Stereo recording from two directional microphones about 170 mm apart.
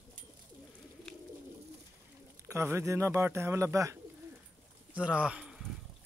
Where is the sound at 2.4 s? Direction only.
15° right (ahead or behind).